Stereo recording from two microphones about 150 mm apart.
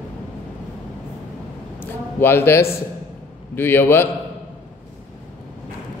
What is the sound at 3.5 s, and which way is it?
Speech, 15° left (ahead or behind).